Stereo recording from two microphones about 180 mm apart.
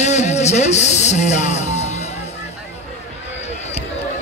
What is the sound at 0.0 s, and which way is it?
Speech, 40° left (ahead or behind).